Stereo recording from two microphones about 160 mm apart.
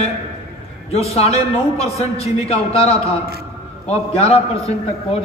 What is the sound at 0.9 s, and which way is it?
A man's voice, 40° left (ahead or behind).